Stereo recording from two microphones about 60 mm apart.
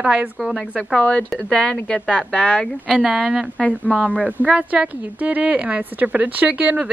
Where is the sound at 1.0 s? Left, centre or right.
Centre.